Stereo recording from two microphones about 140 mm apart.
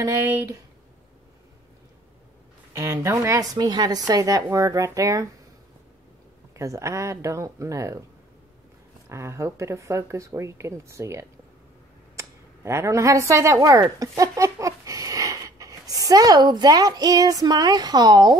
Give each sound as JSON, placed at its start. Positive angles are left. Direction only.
{"t": 0.0, "sound": "speech", "side_deg": -15}
{"t": 2.7, "sound": "speech", "side_deg": -20}
{"t": 6.5, "sound": "speech", "side_deg": -20}
{"t": 9.1, "sound": "speech", "side_deg": -20}